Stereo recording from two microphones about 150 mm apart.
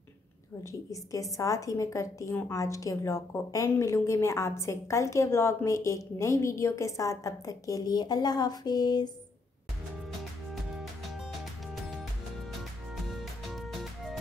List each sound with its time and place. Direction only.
0.7 s a woman's voice: 20° left (ahead or behind)
10.5 s music: centre (ahead or behind)